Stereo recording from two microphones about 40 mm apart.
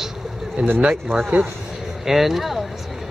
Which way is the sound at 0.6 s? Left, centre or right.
Right.